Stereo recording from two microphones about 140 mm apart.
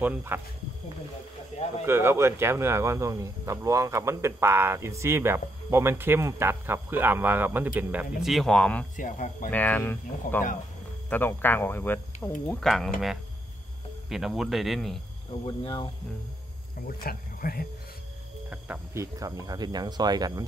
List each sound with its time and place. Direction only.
0.0 s speech: 15° right (ahead or behind)
1.9 s speech: 15° right (ahead or behind); by 8.8 s 5° left (ahead or behind)
8.9 s speech: 65° left (ahead or behind)
9.5 s speech: 10° left (ahead or behind)
12.4 s speech: centre (ahead or behind)
14.0 s speech: centre (ahead or behind)
15.4 s speech: 35° left (ahead or behind)
16.8 s speech: 90° left
18.9 s speech: 25° right (ahead or behind)